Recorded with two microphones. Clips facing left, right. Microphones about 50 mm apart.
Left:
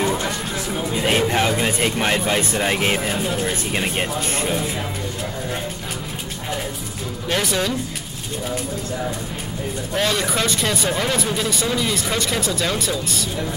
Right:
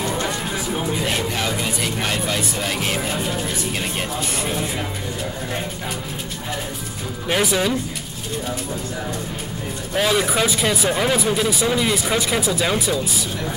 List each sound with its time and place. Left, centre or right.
1.0 s a sound: left
2.0 s speech: left
7.2 s speech: centre
9.9 s speech: centre